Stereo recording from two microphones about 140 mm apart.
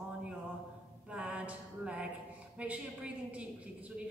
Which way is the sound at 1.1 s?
10° right (ahead or behind).